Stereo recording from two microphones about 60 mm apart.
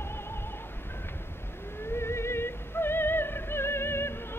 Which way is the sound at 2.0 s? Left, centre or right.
Left.